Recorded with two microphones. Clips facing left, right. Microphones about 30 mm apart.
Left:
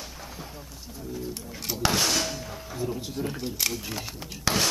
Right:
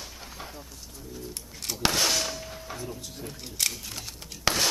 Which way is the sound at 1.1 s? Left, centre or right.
Centre.